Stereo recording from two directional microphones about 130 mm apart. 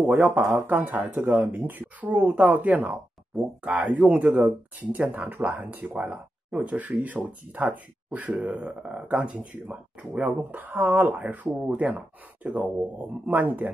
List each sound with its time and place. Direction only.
0.1 s speech: 5° right (ahead or behind)